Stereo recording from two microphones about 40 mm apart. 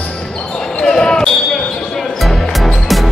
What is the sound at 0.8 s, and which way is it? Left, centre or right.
Basketball bounce, left.